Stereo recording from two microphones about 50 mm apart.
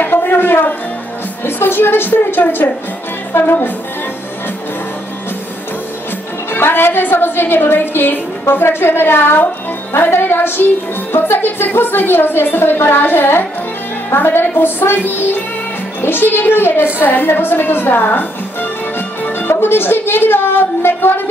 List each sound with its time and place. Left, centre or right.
0.0 s music: left
1.4 s a woman's voice: left
6.5 s a woman's voice: left
8.6 s a woman's voice: left
17.0 s music: left
19.6 s a woman's voice: left